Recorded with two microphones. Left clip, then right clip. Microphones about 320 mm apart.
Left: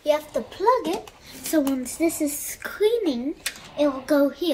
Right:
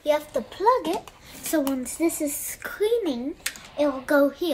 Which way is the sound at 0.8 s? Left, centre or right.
Centre.